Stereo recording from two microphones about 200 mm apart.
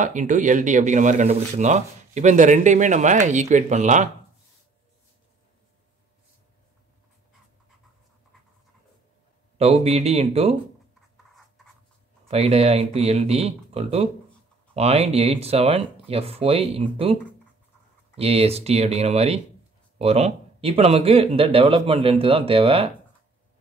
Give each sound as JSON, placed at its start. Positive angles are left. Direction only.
{"t": 0.0, "sound": "speech", "side_deg": -40}
{"t": 9.6, "sound": "speech", "side_deg": -30}
{"t": 12.3, "sound": "speech", "side_deg": -30}